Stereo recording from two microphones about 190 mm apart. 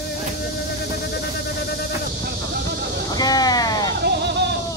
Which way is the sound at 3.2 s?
20° left (ahead or behind).